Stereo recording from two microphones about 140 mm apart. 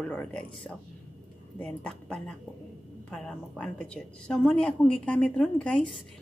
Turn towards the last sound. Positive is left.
turn(degrees=10)  # may be behind; listen again after turning